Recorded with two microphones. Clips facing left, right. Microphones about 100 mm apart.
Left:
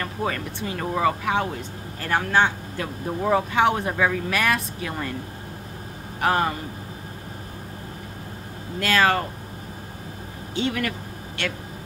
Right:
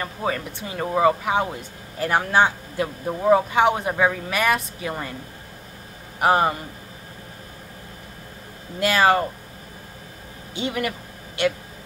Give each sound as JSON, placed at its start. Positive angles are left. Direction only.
{"t": 0.0, "sound": "speech", "side_deg": -10}
{"t": 6.2, "sound": "a man's voice", "side_deg": -20}
{"t": 8.7, "sound": "speech", "side_deg": -15}
{"t": 10.5, "sound": "speech", "side_deg": -10}